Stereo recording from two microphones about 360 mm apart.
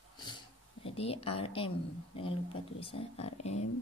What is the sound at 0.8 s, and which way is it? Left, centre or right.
Speech, centre.